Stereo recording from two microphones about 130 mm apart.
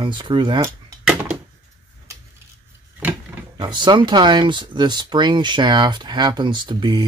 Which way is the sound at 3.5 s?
35° right (ahead or behind).